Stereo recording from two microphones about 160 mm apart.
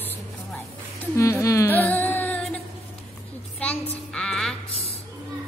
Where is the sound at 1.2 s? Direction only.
20° left (ahead or behind).